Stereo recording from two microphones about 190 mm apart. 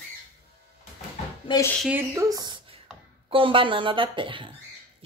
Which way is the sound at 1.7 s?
10° right (ahead or behind).